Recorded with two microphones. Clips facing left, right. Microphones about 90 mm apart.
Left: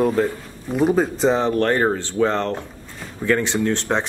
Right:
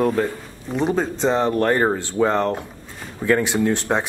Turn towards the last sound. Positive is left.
turn(degrees=-5)  # may be behind; listen again after turning